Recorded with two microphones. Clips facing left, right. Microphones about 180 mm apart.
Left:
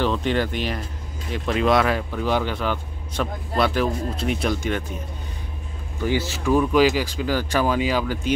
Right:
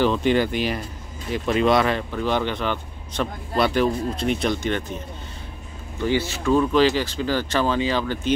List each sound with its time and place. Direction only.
0.0 s speech: centre (ahead or behind)
6.4 s speech: 10° left (ahead or behind)